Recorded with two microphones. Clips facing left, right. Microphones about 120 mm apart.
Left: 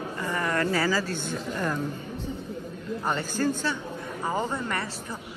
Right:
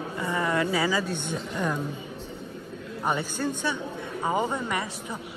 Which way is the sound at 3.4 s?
5° right (ahead or behind).